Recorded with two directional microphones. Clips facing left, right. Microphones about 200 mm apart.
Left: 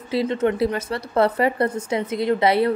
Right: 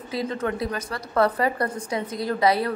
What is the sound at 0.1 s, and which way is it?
A woman's voice, 25° left (ahead or behind).